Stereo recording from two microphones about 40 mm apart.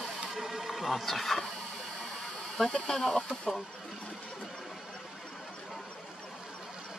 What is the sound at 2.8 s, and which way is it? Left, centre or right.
Speech, centre.